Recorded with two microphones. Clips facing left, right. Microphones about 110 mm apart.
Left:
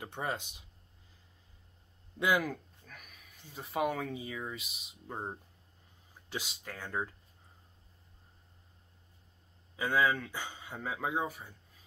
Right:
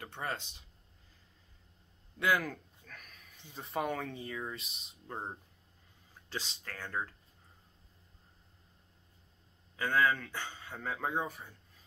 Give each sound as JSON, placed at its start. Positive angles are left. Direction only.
{"t": 0.0, "sound": "speech", "side_deg": 15}
{"t": 2.1, "sound": "speech", "side_deg": 15}
{"t": 9.8, "sound": "speech", "side_deg": 10}